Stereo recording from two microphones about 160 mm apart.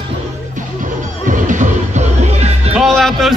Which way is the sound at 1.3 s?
50° right (ahead or behind).